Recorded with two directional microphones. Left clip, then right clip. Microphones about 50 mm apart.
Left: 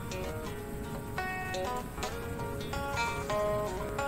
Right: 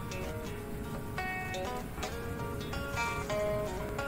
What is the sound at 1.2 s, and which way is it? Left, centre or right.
Music, left.